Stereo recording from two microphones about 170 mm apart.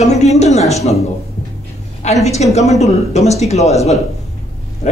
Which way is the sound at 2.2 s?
40° left (ahead or behind).